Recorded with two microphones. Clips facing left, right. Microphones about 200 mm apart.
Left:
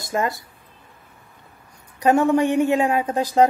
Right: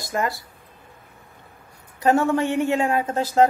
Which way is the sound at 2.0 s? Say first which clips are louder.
Left 2 dB; 15° left (ahead or behind).